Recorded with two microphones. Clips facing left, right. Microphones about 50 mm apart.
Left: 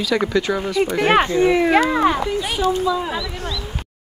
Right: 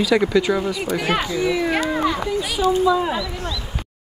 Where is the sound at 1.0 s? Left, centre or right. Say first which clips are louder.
Left 8 dB; left.